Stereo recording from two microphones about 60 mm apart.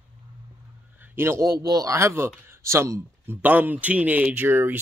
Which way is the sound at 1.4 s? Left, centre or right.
Right.